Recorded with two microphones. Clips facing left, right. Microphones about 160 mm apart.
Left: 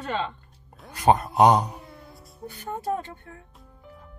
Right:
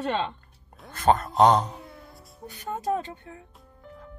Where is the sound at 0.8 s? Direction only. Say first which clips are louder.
Left 2 dB; 15° left (ahead or behind).